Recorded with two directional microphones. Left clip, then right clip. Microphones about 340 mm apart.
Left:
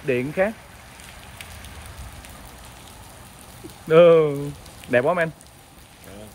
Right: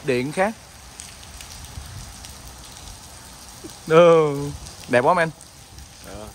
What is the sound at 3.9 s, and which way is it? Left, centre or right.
Speech, centre.